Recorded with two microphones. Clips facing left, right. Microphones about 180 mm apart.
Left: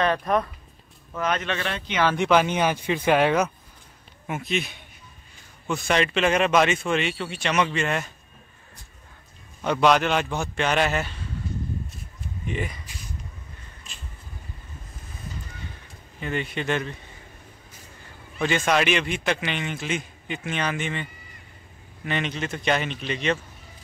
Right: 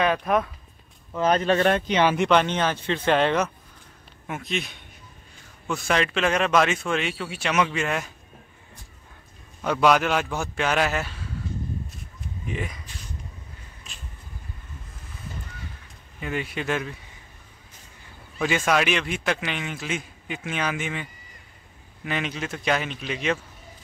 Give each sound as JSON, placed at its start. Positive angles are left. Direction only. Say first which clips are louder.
{"t": 0.0, "sound": "a man's voice", "louder": "even", "side_deg": -5}
{"t": 1.2, "sound": "speech", "louder": "right 7 dB", "side_deg": -35}
{"t": 2.1, "sound": "a man's voice", "louder": "even", "side_deg": 5}
{"t": 9.6, "sound": "a man's voice", "louder": "even", "side_deg": -5}
{"t": 12.4, "sound": "a man's voice", "louder": "left 2 dB", "side_deg": 0}
{"t": 16.2, "sound": "a man's voice", "louder": "left 1 dB", "side_deg": -5}
{"t": 18.4, "sound": "a man's voice", "louder": "even", "side_deg": -5}